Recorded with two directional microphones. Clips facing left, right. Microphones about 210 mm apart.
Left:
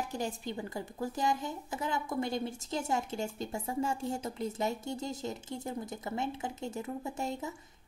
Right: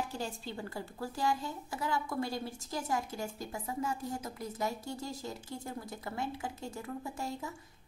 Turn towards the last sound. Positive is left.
turn(degrees=20)  # may be behind; listen again after turning